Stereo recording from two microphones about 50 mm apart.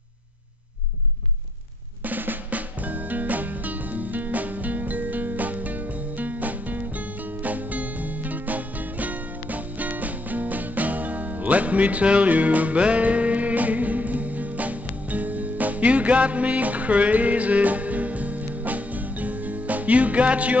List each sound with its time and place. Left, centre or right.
2.0 s music: right